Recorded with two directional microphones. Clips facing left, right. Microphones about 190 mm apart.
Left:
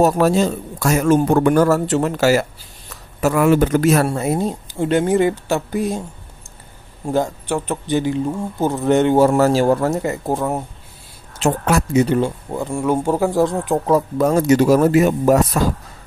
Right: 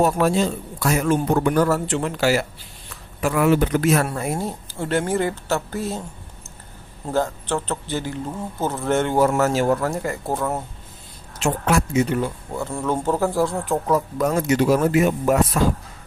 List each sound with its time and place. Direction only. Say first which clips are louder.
0.0 s a man's voice: left 4 dB; 40° left (ahead or behind)
4.1 s speech: left 6 dB; 25° left (ahead or behind)
7.1 s speech: left 3 dB; 15° left (ahead or behind)
11.3 s speech: left 3 dB; 35° left (ahead or behind)
12.5 s speech: left 5 dB; 15° left (ahead or behind)
13.8 s speech: left 5 dB; 30° left (ahead or behind)